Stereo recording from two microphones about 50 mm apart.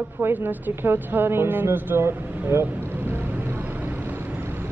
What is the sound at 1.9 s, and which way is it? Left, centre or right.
Speech, right.